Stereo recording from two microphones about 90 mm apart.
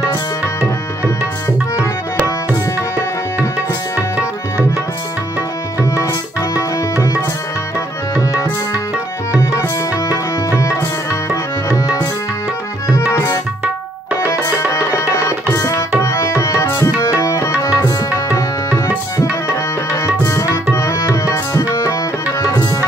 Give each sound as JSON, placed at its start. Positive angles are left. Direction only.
{"t": 6.5, "sound": "tabla", "side_deg": 40}
{"t": 8.2, "sound": "tabla", "side_deg": 40}
{"t": 12.9, "sound": "tabla", "side_deg": 35}
{"t": 14.4, "sound": "tabla", "side_deg": 30}
{"t": 20.2, "sound": "tabla", "side_deg": 30}